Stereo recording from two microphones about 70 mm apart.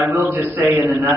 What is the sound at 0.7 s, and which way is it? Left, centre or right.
Speech, right.